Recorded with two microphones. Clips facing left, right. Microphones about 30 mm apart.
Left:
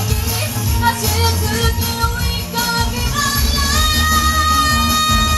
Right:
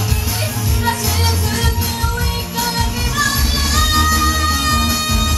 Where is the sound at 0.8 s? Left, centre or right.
Centre.